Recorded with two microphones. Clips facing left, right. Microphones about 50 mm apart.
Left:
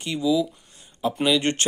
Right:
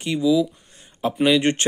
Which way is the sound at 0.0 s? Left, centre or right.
Right.